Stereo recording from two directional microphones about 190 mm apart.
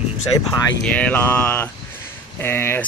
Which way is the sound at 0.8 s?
5° left (ahead or behind).